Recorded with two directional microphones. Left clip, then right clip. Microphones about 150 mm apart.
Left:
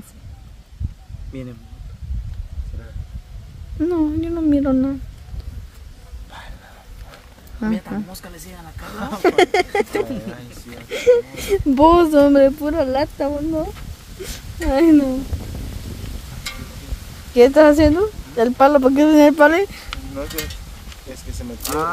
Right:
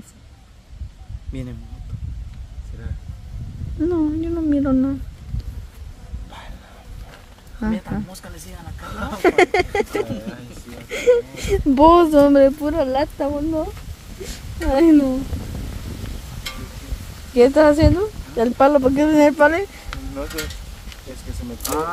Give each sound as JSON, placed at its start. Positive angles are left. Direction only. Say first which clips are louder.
{"t": 1.3, "sound": "speech", "louder": "even", "side_deg": -70}
{"t": 3.8, "sound": "speech", "louder": "left 1 dB", "side_deg": 15}
{"t": 7.6, "sound": "speech", "louder": "left 1 dB", "side_deg": 5}
{"t": 8.8, "sound": "speech", "louder": "left 1 dB", "side_deg": 40}
{"t": 9.2, "sound": "speech", "louder": "even", "side_deg": 5}
{"t": 14.2, "sound": "a sound", "louder": "left 1 dB", "side_deg": 5}
{"t": 17.3, "sound": "a woman's voice", "louder": "left 2 dB", "side_deg": 20}
{"t": 19.9, "sound": "a sound", "louder": "left 1 dB", "side_deg": 5}